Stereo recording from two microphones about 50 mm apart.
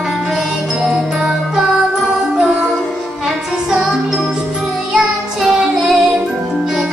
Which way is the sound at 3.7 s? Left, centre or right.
Centre.